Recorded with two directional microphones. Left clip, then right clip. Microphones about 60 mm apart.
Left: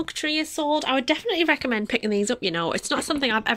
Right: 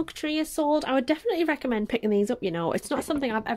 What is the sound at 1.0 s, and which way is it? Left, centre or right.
Speech, right.